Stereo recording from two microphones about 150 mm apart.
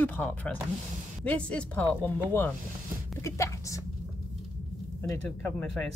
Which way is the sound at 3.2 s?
20° left (ahead or behind).